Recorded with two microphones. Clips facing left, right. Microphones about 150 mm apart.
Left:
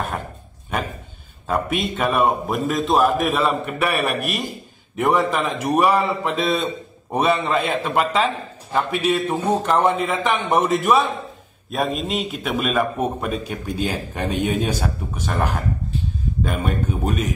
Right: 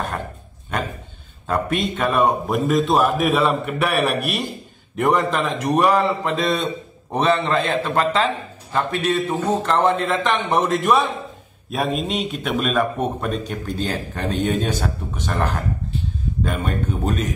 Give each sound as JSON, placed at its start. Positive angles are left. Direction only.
{"t": 1.5, "sound": "a man's voice", "side_deg": 5}